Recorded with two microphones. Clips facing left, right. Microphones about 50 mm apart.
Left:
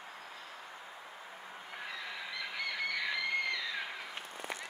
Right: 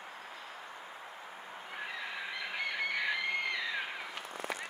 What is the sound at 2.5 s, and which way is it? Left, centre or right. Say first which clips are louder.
Fowl: right 2 dB; right.